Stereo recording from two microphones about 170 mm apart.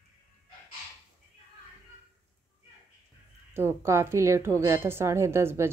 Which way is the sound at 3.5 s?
15° right (ahead or behind).